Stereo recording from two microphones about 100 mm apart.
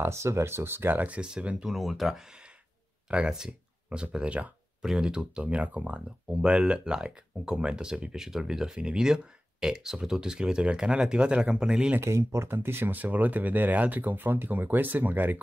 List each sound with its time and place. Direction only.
0.0 s speech: 25° right (ahead or behind); by 12.0 s 10° right (ahead or behind)
12.0 s speech: 30° right (ahead or behind)